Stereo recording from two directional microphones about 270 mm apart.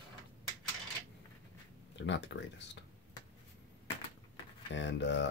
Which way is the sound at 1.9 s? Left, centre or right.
Left.